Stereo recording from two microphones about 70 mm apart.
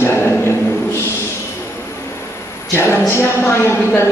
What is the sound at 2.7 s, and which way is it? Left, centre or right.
Speech, left.